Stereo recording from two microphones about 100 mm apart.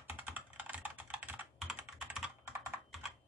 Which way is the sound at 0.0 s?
15° right (ahead or behind).